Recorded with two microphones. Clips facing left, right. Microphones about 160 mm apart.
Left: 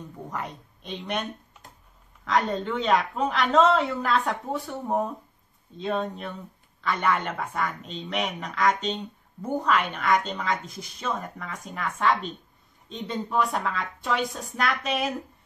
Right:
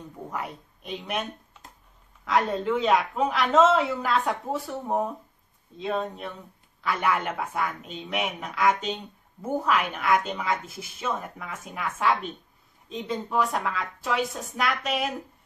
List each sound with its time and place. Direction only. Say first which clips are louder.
0.3 s a woman's voice: right 1 dB; 5° right (ahead or behind)